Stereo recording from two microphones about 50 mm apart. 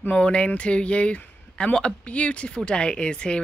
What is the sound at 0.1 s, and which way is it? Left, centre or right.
Speech, left.